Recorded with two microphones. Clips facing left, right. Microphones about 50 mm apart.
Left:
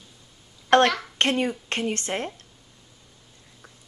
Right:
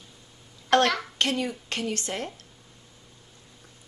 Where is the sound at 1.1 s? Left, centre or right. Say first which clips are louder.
Left 4 dB; left.